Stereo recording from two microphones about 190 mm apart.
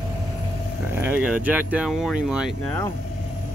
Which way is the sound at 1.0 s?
5° right (ahead or behind).